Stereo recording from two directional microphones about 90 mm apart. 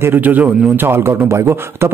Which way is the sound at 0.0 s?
20° right (ahead or behind).